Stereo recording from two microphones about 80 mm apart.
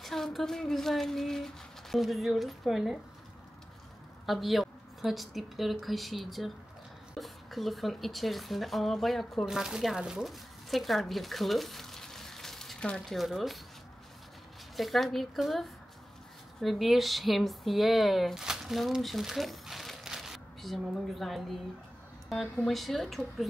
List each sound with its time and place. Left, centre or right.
0.0 s speech: centre
4.3 s speech: centre
14.8 s speech: centre
22.7 s speech: centre